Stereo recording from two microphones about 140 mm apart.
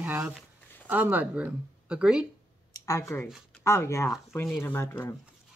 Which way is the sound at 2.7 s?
20° left (ahead or behind).